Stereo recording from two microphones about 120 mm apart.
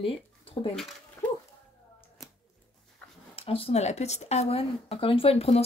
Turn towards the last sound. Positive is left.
turn(degrees=55)  # may be behind; listen again after turning